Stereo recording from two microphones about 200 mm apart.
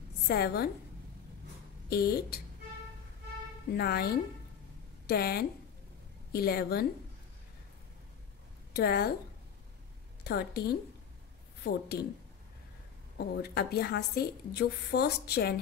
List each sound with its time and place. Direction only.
0.3 s a woman's voice: 50° left (ahead or behind)
1.9 s a woman's voice: 50° left (ahead or behind)
3.7 s a woman's voice: 50° left (ahead or behind)
8.7 s a woman's voice: 50° left (ahead or behind)
10.2 s a woman's voice: 55° left (ahead or behind)
13.2 s a woman's voice: 50° left (ahead or behind)